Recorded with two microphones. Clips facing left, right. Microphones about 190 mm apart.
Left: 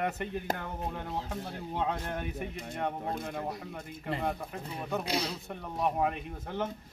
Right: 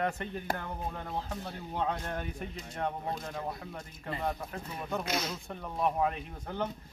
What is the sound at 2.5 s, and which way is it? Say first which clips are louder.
Speech: left 4 dB; 55° left (ahead or behind).